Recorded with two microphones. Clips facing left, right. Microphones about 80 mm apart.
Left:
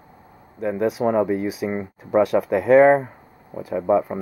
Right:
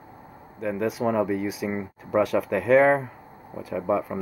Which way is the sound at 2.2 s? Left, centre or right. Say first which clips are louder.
Left 4 dB; centre.